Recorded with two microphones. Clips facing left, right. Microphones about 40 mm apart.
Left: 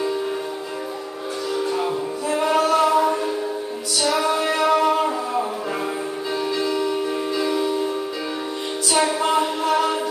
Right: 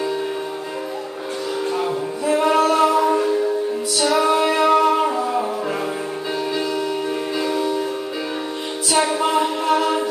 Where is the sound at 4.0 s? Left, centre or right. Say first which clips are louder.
Right 3 dB; centre.